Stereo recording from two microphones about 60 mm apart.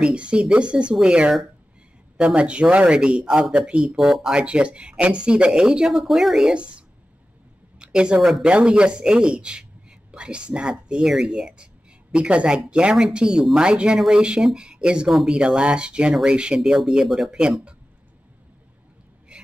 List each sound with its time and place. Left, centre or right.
0.0 s speech: centre
4.3 s speech: centre
6.5 s speech: centre
7.8 s a man's voice: centre
19.3 s gasp: centre